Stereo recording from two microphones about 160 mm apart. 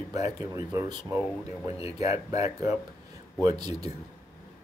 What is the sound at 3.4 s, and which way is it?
Speech, 25° right (ahead or behind).